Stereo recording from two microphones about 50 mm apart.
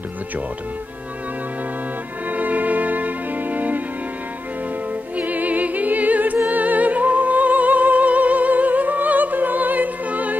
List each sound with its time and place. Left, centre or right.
2.3 s music: right
5.1 s music: right